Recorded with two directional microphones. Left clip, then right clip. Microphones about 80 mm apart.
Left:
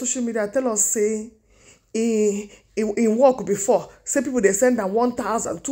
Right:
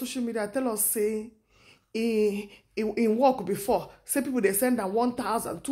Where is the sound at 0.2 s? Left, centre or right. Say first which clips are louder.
Left 6 dB; left.